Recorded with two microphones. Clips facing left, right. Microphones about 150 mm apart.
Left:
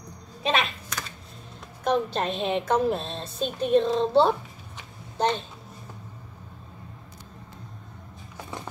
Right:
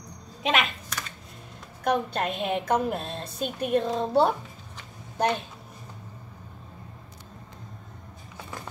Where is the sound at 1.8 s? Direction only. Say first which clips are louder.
Left 1 dB; 10° right (ahead or behind).